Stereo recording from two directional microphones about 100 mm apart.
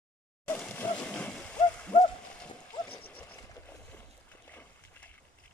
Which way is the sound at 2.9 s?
15° left (ahead or behind).